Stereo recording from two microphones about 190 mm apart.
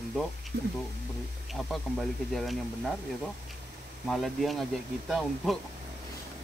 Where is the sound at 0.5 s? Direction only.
55° right (ahead or behind).